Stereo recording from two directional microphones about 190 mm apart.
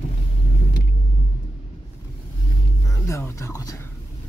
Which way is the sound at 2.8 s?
15° left (ahead or behind).